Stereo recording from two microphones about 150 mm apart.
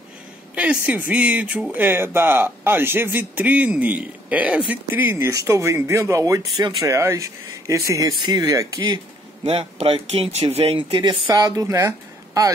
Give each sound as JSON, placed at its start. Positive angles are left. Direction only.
{"t": 0.6, "sound": "speech", "side_deg": -10}
{"t": 9.5, "sound": "speech", "side_deg": -40}